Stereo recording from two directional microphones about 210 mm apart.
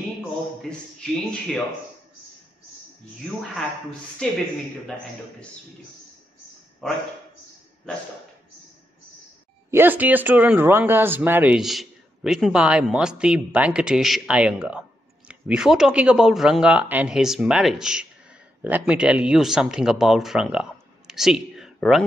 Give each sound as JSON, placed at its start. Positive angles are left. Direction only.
{"t": 0.6, "sound": "speech", "side_deg": 5}
{"t": 4.2, "sound": "speech", "side_deg": 5}
{"t": 9.7, "sound": "speech", "side_deg": -10}
{"t": 21.1, "sound": "a sound", "side_deg": 0}